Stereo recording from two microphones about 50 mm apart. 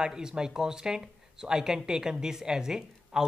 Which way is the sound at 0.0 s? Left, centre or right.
Centre.